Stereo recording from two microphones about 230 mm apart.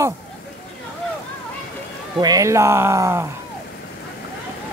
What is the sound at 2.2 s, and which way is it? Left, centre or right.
Speech, centre.